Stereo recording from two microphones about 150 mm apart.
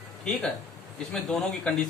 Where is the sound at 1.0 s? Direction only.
5° left (ahead or behind).